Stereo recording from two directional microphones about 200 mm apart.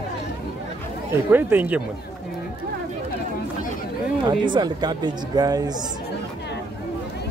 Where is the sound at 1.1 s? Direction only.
10° right (ahead or behind).